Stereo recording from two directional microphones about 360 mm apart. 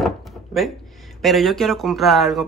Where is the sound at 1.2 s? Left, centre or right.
Centre.